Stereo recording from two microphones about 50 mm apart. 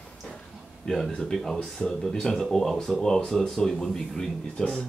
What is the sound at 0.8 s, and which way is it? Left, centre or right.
Speech, centre.